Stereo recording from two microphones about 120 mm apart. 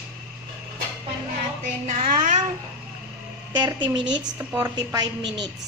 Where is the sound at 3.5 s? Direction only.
40° right (ahead or behind).